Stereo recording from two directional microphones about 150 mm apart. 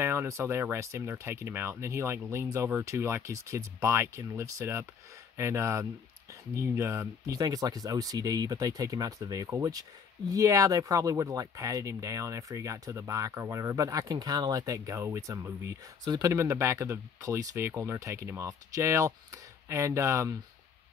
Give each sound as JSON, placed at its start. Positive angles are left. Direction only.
{"t": 0.0, "sound": "speech", "side_deg": -15}